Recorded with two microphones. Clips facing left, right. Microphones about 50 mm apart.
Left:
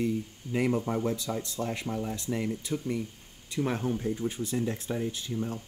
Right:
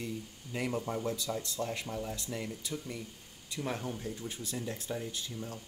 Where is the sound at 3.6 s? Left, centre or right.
Left.